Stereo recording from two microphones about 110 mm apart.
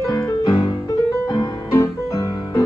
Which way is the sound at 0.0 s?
30° left (ahead or behind).